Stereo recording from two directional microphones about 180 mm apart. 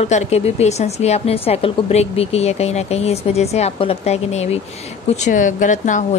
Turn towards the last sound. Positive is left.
turn(degrees=45)  # may be behind; listen again after turning